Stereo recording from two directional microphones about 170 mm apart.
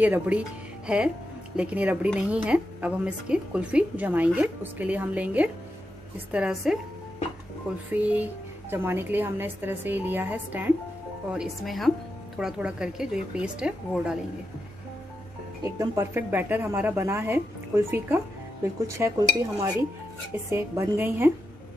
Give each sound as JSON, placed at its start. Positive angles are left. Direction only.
{"t": 0.0, "sound": "a woman's voice", "side_deg": -10}
{"t": 7.9, "sound": "a woman's voice", "side_deg": -10}
{"t": 11.3, "sound": "a woman's voice", "side_deg": 0}
{"t": 15.6, "sound": "a woman's voice", "side_deg": -20}
{"t": 20.4, "sound": "a woman's voice", "side_deg": -15}